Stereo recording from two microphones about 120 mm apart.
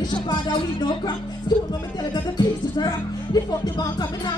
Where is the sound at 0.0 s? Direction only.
35° left (ahead or behind).